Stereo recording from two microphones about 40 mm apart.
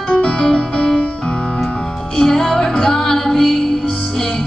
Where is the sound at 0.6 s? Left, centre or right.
Centre.